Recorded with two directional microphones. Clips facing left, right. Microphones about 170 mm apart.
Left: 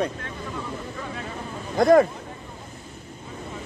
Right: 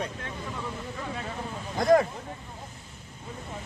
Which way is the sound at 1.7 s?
65° left (ahead or behind).